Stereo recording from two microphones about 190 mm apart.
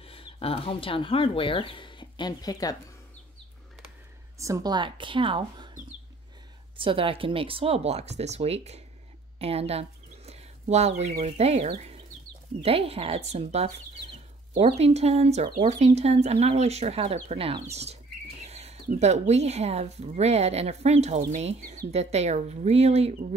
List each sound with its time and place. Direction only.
0.0 s speech: 30° left (ahead or behind)
4.4 s a woman's voice: 20° right (ahead or behind)
6.8 s speech: 30° right (ahead or behind)
9.4 s a sound: 30° right (ahead or behind)
11.1 s speech: 35° right (ahead or behind)